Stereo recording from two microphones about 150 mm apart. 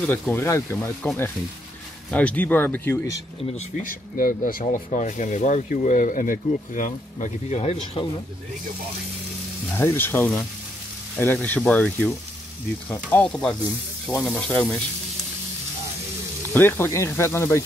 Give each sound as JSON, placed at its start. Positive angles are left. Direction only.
{"t": 0.0, "sound": "speech", "side_deg": 10}
{"t": 3.8, "sound": "speech", "side_deg": 65}
{"t": 5.0, "sound": "speech", "side_deg": 55}
{"t": 9.8, "sound": "speech", "side_deg": 15}
{"t": 11.4, "sound": "speech", "side_deg": 10}
{"t": 16.5, "sound": "speech", "side_deg": 15}